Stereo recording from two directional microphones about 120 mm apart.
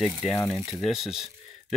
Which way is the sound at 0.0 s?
5° right (ahead or behind).